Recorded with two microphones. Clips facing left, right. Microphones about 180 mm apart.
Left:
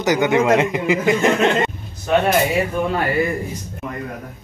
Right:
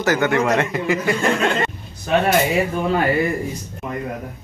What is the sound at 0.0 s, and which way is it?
A man's voice, 15° left (ahead or behind).